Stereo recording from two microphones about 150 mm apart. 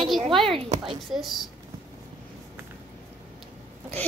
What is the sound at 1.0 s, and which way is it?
Speech, centre (ahead or behind).